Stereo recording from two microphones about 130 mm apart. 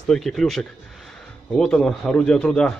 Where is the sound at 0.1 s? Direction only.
5° left (ahead or behind).